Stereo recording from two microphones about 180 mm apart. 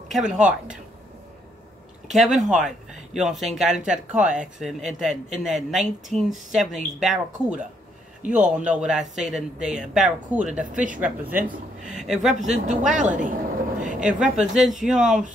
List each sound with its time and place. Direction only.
0.1 s speech: 5° right (ahead or behind)
2.1 s speech: centre (ahead or behind)
10.6 s speech: 45° right (ahead or behind)
11.0 s speech: 10° right (ahead or behind)
12.4 s speech: 45° right (ahead or behind)
13.8 s a sound: 45° right (ahead or behind)
14.4 s speech: centre (ahead or behind)